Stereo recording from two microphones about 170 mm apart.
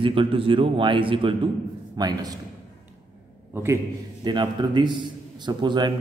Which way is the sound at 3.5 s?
15° right (ahead or behind).